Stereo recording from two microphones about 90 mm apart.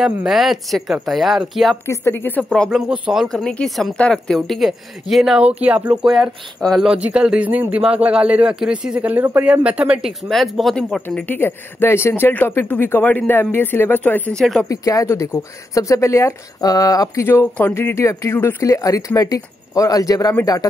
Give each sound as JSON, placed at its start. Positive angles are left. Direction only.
{"t": 0.0, "sound": "speech", "side_deg": -5}
{"t": 1.9, "sound": "speech", "side_deg": 25}
{"t": 2.9, "sound": "speech", "side_deg": -5}
{"t": 5.4, "sound": "speech", "side_deg": -15}
{"t": 6.9, "sound": "speech", "side_deg": -10}
{"t": 11.1, "sound": "speech", "side_deg": 20}
{"t": 14.3, "sound": "speech", "side_deg": 5}
{"t": 14.7, "sound": "speech", "side_deg": 40}
{"t": 17.3, "sound": "speech", "side_deg": 20}